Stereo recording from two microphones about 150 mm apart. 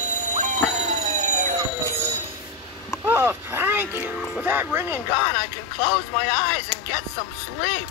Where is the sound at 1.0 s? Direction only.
50° right (ahead or behind).